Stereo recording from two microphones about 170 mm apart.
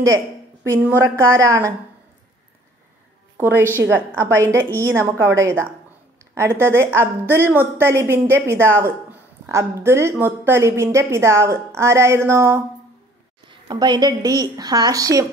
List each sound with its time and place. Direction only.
0.7 s a woman's voice: 15° right (ahead or behind)
3.3 s a woman's voice: 15° right (ahead or behind)